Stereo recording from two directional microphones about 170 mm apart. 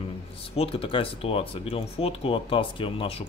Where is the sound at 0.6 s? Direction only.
30° left (ahead or behind).